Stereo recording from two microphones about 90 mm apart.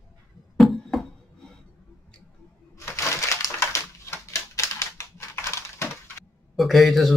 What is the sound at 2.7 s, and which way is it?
Crushing, 35° left (ahead or behind).